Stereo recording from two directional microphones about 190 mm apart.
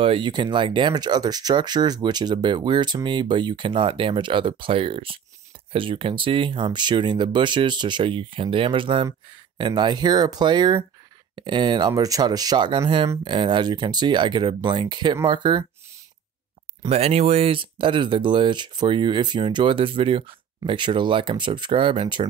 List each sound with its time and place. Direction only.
0.0 s speech: 25° right (ahead or behind)
16.8 s speech: 35° right (ahead or behind)